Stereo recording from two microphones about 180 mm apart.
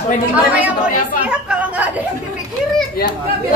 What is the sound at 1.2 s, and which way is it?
Speech, 5° right (ahead or behind).